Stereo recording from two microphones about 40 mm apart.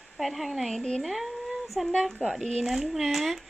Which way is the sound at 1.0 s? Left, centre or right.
Centre.